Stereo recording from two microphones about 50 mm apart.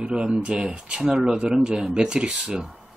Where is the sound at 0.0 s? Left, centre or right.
Centre.